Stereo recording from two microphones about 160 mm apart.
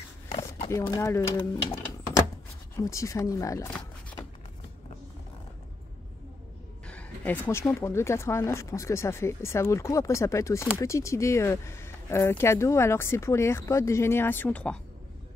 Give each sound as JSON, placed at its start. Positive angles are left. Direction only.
{"t": 0.7, "sound": "speech", "side_deg": 15}
{"t": 6.9, "sound": "speech", "side_deg": 10}